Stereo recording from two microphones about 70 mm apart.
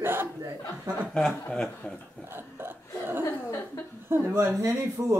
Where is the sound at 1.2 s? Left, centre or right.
Centre.